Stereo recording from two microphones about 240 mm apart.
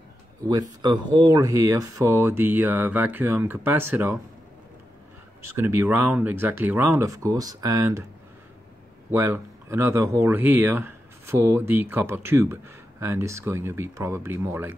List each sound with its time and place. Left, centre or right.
0.5 s speech: centre
5.6 s speech: centre
9.1 s speech: centre